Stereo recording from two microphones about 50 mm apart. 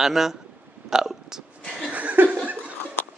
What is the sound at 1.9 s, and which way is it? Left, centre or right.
Laughter, right.